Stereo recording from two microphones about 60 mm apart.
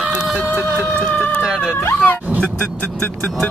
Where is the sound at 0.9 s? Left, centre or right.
Centre.